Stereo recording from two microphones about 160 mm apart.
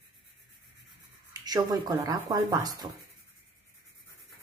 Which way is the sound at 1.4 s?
25° right (ahead or behind).